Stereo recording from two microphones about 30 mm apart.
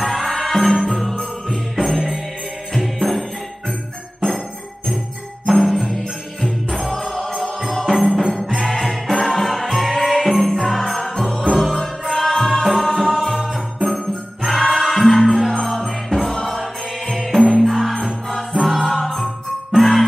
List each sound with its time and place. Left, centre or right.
0.0 s music: centre
1.5 s jingle bell: centre
2.7 s music: centre
5.7 s music: centre
7.8 s music: centre
12.6 s music: centre